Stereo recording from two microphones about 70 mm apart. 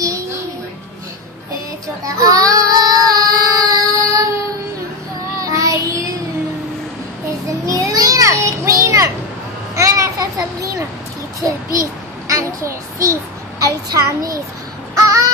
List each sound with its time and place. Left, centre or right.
0.0 s music: right
2.0 s child singing: right
5.4 s child singing: right
7.6 s children playing: right
9.8 s a sound: right
12.3 s a child's voice: right
15.0 s music: right